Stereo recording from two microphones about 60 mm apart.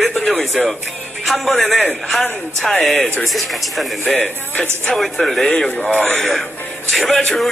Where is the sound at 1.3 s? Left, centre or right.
Centre.